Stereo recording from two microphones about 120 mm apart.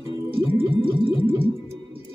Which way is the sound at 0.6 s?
45° right (ahead or behind).